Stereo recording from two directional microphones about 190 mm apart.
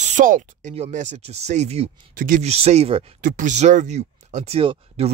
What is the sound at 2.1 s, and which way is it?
Speech, 45° right (ahead or behind).